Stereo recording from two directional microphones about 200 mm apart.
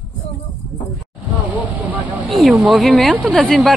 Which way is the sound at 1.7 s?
10° right (ahead or behind).